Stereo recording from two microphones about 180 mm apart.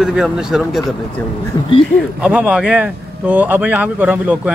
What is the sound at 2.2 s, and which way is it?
Speech, 5° right (ahead or behind).